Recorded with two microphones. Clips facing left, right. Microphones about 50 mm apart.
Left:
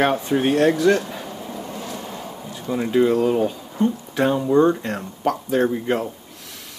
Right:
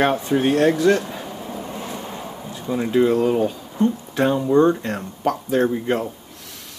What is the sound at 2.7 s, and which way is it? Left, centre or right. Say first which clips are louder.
Speech: even; centre.